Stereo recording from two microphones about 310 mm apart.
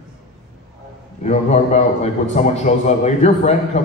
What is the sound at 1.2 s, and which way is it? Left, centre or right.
A man's voice, left.